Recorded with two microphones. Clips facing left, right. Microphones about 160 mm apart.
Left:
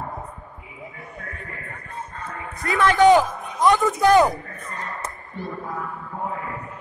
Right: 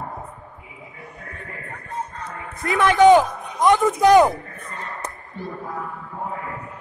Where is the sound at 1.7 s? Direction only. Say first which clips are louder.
Right 7 dB; 80° right.